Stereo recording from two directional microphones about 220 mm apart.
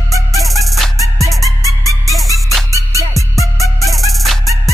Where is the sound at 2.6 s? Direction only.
15° right (ahead or behind).